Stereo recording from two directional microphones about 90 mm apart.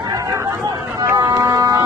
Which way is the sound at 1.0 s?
45° right (ahead or behind).